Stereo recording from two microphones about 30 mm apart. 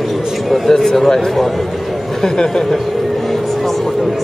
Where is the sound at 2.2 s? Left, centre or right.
Left.